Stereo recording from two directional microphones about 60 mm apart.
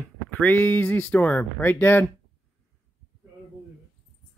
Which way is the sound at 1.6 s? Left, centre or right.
Left.